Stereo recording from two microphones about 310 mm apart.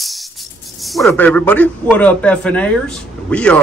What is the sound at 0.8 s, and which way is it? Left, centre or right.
Speech, centre.